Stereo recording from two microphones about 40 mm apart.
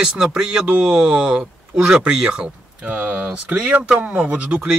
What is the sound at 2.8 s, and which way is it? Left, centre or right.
Speech, right.